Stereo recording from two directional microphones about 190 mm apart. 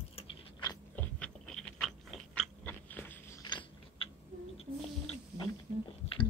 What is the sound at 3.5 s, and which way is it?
Gears, 25° left (ahead or behind).